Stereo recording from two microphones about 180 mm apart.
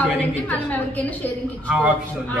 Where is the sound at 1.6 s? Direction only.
10° right (ahead or behind).